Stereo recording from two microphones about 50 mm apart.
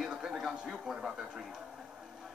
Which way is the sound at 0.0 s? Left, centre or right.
Centre.